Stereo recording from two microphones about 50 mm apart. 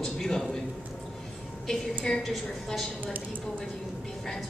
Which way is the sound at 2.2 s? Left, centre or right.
Centre.